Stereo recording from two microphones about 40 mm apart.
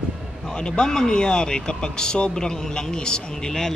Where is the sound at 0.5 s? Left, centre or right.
Left.